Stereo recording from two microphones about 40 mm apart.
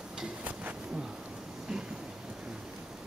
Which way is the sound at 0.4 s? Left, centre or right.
Right.